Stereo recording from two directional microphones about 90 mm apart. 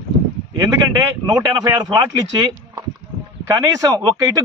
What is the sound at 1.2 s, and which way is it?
Speech, 40° right (ahead or behind).